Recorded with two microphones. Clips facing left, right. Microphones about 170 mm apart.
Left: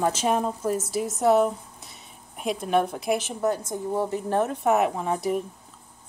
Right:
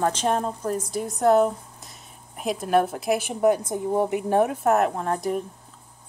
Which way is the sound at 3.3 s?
15° right (ahead or behind).